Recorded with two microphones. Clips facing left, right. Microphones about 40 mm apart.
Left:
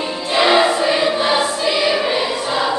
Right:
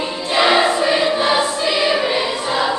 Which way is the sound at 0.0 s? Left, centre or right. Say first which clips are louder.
Even; centre.